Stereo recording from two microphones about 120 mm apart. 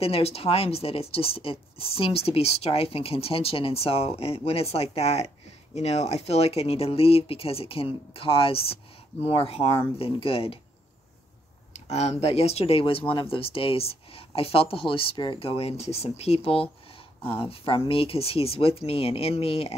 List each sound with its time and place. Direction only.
0.0 s speech: 55° left (ahead or behind)
11.7 s speech: 65° left (ahead or behind)